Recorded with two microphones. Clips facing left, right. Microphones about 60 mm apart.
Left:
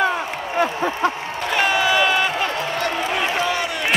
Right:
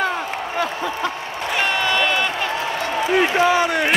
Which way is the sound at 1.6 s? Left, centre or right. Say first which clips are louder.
Left 2 dB; centre.